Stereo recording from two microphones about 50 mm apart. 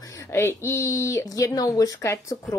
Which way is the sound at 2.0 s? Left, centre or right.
Left.